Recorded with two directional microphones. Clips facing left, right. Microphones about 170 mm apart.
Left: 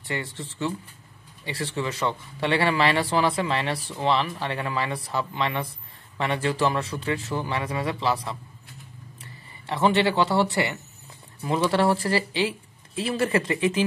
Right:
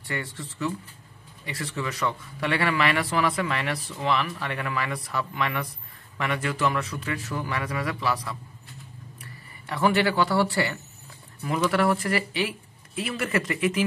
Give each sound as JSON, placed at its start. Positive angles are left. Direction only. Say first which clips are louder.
{"t": 0.0, "sound": "speech", "louder": "left 2 dB", "side_deg": 25}